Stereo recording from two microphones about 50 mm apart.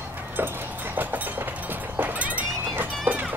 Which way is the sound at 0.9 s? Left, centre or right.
Right.